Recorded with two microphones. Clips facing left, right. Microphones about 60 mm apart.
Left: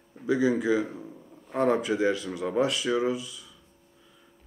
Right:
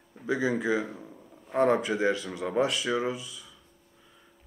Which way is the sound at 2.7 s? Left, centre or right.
Centre.